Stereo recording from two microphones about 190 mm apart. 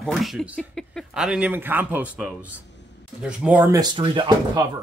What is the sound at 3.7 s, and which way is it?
Speech, 25° right (ahead or behind).